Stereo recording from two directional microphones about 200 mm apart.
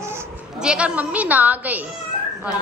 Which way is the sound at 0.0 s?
15° right (ahead or behind).